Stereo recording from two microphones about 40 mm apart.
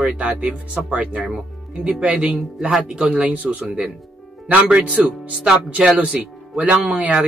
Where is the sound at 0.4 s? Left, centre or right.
Right.